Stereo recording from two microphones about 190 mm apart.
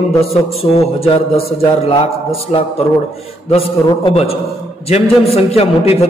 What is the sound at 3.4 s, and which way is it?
A man's voice, 30° left (ahead or behind).